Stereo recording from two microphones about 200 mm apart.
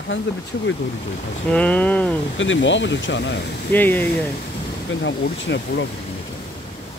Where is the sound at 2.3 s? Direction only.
70° left (ahead or behind).